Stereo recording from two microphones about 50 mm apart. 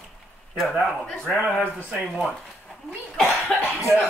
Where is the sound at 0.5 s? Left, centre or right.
Centre.